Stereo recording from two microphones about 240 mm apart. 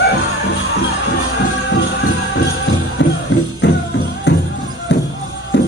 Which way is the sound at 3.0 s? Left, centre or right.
Left.